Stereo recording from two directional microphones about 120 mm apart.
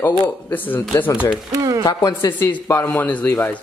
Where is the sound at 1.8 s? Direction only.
35° left (ahead or behind).